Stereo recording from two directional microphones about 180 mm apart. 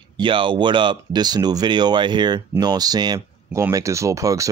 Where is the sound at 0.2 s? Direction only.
25° right (ahead or behind).